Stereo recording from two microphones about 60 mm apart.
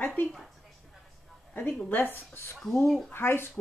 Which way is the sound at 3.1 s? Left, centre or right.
Left.